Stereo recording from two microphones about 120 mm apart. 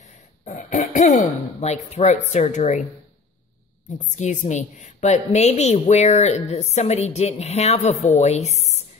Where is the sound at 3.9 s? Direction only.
90° left; by 8.8 s 70° left (ahead or behind).